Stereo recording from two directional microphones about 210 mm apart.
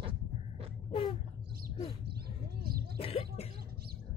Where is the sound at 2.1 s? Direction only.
50° right (ahead or behind).